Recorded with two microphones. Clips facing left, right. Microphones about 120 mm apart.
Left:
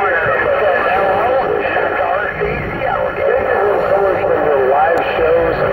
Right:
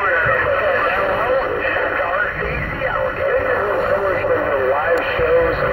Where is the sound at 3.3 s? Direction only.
40° left (ahead or behind).